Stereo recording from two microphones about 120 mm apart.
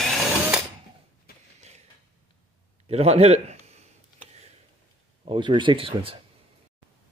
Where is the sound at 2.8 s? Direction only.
60° right (ahead or behind).